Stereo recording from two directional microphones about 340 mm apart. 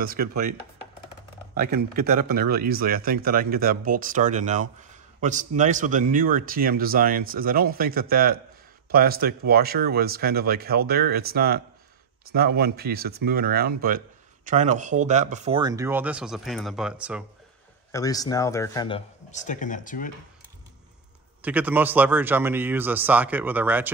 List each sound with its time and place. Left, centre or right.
0.0 s speech: right
1.6 s speech: right; by 17.2 s centre
17.9 s speech: centre
21.4 s speech: centre